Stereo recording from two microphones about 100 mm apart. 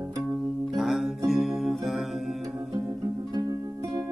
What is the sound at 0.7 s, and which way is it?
Music, 5° right (ahead or behind).